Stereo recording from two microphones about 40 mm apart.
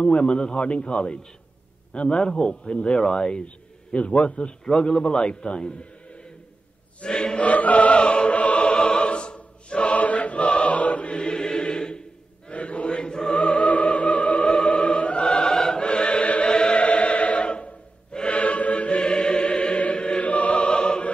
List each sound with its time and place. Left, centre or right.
0.0 s a man's voice: left
7.0 s choir: centre
7.3 s choir: left
11.1 s choir: centre
12.4 s music: left
15.2 s choir: left
15.5 s choir: centre
15.8 s choir: left
18.9 s music: centre; by 20.6 s left
20.6 s music: left